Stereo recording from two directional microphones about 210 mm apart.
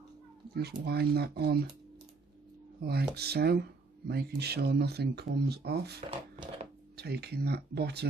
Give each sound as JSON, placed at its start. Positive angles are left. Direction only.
{"t": 0.6, "sound": "speech", "side_deg": -50}
{"t": 2.8, "sound": "speech", "side_deg": -50}
{"t": 6.0, "sound": "a sound", "side_deg": -25}
{"t": 7.0, "sound": "speech", "side_deg": -50}